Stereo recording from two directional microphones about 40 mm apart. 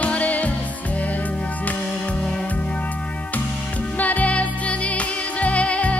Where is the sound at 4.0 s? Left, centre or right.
Left.